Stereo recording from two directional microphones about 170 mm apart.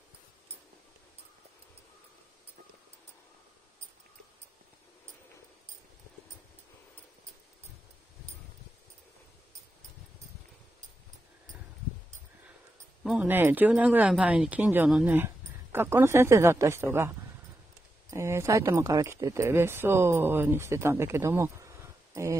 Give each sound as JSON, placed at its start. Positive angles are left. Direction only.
{"t": 13.0, "sound": "speech", "side_deg": -5}
{"t": 18.1, "sound": "speech", "side_deg": -15}